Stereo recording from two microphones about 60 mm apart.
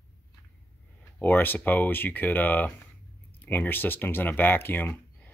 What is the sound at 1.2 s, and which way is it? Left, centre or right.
Speech, left.